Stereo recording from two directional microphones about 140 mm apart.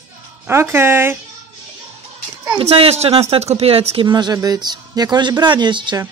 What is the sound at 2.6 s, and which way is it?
Speech, 45° right (ahead or behind).